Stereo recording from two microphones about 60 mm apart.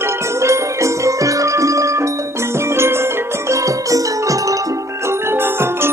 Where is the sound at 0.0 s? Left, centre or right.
Right.